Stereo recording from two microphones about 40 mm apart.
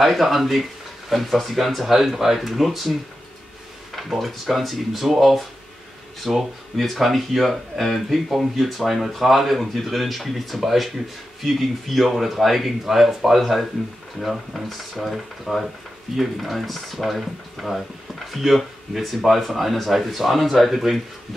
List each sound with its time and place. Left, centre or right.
0.0 s speech: centre